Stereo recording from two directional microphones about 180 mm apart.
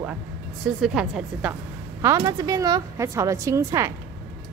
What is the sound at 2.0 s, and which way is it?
Speech, 20° right (ahead or behind).